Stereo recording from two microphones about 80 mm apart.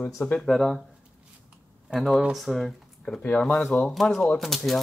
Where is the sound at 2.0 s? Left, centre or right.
Centre.